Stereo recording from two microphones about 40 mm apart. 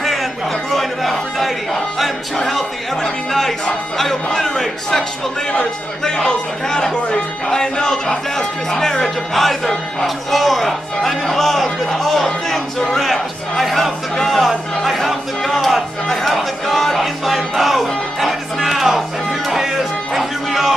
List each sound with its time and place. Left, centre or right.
0.0 s chatter: centre
3.0 s speech: centre
5.5 s speech: left; by 10.7 s centre
11.0 s speech: centre
14.8 s chatter: centre
19.5 s music: centre